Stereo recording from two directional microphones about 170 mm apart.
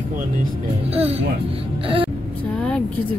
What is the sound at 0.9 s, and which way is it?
Speech, 35° right (ahead or behind).